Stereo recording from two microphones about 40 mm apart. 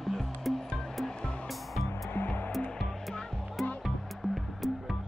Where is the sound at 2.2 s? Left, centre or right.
Left.